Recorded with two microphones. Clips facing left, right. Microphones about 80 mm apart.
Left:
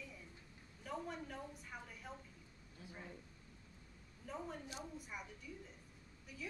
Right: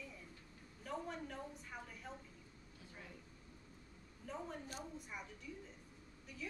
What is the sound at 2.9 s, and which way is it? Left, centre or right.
Speech, left.